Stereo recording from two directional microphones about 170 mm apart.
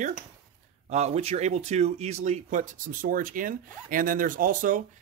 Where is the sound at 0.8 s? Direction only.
40° right (ahead or behind).